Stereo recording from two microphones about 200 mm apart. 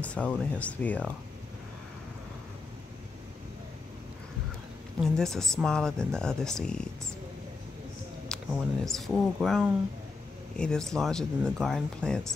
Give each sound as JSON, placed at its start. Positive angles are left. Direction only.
{"t": 0.0, "sound": "speech", "side_deg": 5}
{"t": 5.0, "sound": "speech", "side_deg": 0}
{"t": 8.3, "sound": "a sound", "side_deg": 5}
{"t": 8.8, "sound": "speech", "side_deg": 0}